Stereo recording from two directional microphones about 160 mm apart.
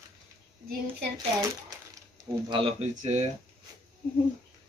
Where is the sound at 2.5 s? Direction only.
35° right (ahead or behind).